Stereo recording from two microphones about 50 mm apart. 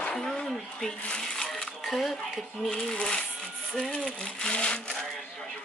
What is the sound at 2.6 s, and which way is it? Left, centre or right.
Speech, centre.